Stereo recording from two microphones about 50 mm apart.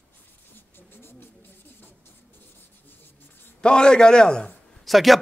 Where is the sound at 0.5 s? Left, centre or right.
Left.